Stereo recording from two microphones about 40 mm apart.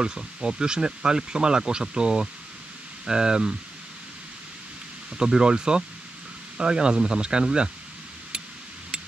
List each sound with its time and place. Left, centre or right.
0.0 s speech: centre
5.1 s speech: centre